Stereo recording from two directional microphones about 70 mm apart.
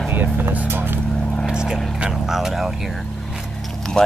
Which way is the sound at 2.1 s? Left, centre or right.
Centre.